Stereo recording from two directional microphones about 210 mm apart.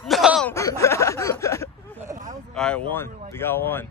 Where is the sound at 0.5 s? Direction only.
15° left (ahead or behind).